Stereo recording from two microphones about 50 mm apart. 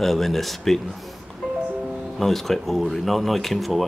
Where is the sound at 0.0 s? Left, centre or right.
Centre.